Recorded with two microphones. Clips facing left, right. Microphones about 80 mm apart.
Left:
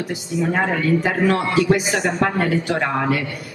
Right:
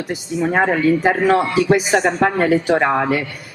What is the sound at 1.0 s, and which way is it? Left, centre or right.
Speech, right.